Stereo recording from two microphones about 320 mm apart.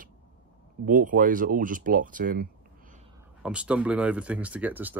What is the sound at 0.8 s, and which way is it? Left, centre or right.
Speech, right.